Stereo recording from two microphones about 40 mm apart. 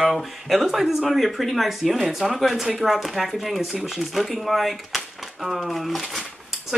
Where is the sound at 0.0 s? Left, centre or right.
Centre.